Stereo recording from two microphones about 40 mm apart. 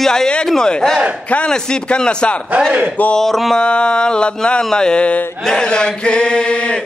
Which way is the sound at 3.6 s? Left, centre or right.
Left.